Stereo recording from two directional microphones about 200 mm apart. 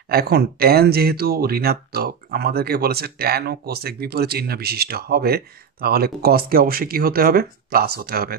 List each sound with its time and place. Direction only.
0.1 s speech: 50° right (ahead or behind)